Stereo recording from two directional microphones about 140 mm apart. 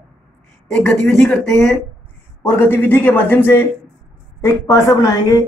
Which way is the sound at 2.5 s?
15° left (ahead or behind).